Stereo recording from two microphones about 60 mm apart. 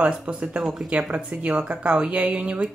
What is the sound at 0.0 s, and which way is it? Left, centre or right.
Speech, right.